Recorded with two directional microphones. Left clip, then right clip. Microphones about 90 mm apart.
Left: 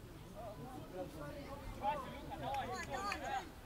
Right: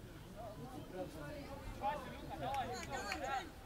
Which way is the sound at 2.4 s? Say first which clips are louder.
Even; 30° right (ahead or behind).